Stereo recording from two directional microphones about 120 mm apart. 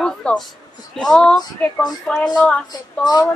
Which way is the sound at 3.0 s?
35° left (ahead or behind).